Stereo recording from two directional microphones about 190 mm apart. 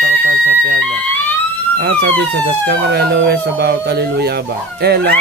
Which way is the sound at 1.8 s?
55° right (ahead or behind).